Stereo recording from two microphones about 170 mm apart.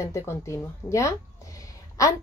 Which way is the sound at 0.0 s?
15° left (ahead or behind).